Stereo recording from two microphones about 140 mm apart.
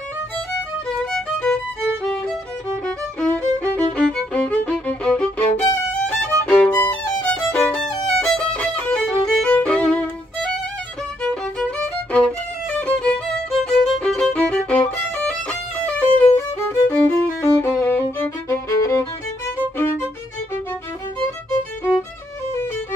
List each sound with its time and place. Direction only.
1.1 s music: 5° left (ahead or behind)
3.3 s music: 10° left (ahead or behind)
5.9 s violin: 10° left (ahead or behind)
11.2 s music: 10° left (ahead or behind)